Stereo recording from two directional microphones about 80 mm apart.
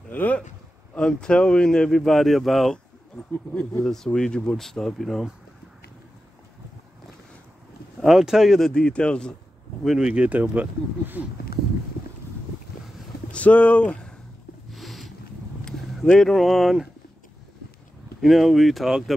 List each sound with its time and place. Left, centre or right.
0.1 s a sound: left
0.9 s speech: centre
8.0 s speech: centre
9.8 s speech: centre
13.3 s speech: centre
14.7 s a sound: centre
15.6 s speech: centre
18.2 s speech: centre